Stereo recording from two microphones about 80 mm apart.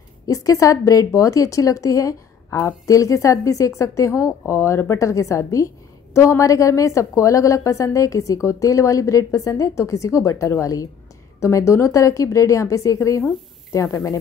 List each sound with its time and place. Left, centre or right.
0.3 s a woman's voice: left